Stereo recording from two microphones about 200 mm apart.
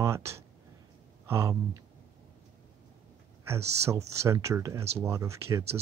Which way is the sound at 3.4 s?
15° right (ahead or behind).